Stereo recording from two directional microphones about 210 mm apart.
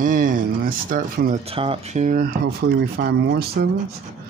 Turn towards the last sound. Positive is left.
turn(degrees=-50)  # may be behind; listen again after turning